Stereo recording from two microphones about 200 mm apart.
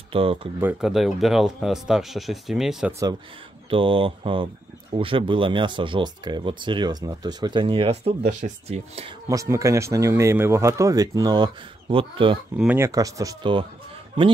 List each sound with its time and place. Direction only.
0.1 s speech: 30° right (ahead or behind)
0.6 s speech: 5° right (ahead or behind)
3.7 s speech: 25° right (ahead or behind)
9.3 s speech: 15° right (ahead or behind)
12.5 s speech: 10° right (ahead or behind)